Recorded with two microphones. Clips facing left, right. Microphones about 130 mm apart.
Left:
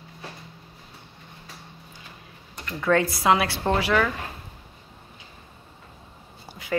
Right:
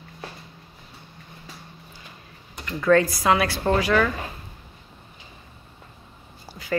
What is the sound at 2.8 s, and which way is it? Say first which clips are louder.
Speech: right 3 dB; 15° left (ahead or behind).